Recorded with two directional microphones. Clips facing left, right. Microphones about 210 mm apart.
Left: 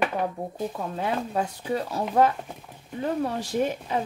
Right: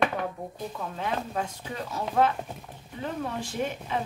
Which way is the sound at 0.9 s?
35° left (ahead or behind).